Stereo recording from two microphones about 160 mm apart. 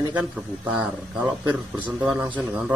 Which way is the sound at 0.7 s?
5° right (ahead or behind).